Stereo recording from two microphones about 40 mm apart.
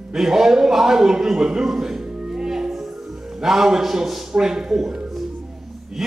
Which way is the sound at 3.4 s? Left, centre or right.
Centre.